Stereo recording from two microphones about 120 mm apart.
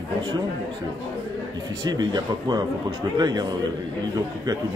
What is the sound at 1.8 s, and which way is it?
Speech, 35° right (ahead or behind).